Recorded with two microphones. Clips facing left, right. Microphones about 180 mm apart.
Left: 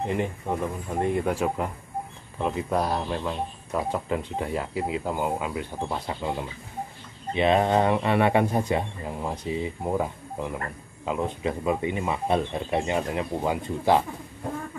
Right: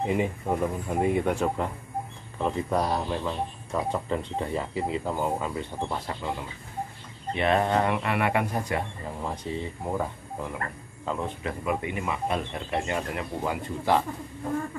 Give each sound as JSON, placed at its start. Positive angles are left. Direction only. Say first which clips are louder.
{"t": 0.0, "sound": "speech", "louder": "right 1 dB", "side_deg": -5}
{"t": 6.0, "sound": "speech", "louder": "left 3 dB", "side_deg": 20}
{"t": 9.0, "sound": "speech", "louder": "left 2 dB", "side_deg": 10}
{"t": 11.6, "sound": "speech", "louder": "left 2 dB", "side_deg": 25}